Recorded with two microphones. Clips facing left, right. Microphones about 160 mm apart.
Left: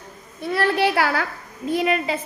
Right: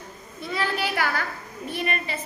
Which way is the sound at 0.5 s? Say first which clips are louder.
Left 7 dB; 65° left (ahead or behind).